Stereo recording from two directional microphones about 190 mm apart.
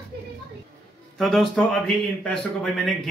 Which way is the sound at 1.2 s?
Centre (ahead or behind).